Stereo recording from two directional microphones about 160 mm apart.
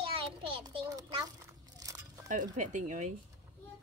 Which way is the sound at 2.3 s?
50° right (ahead or behind).